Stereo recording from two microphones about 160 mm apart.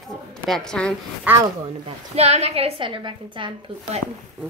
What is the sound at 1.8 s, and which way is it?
A woman's voice, 40° right (ahead or behind).